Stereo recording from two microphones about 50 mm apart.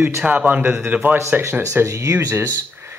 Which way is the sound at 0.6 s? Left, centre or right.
Right.